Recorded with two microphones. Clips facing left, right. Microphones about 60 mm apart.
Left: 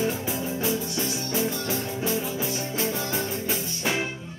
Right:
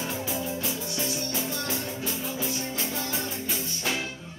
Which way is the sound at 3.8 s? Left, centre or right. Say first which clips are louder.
Left 4 dB; left.